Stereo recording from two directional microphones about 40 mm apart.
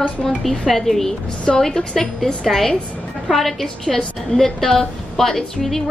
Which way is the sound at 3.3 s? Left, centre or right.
Centre.